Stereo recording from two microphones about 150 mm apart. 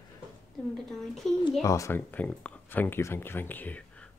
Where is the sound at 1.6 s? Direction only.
20° left (ahead or behind).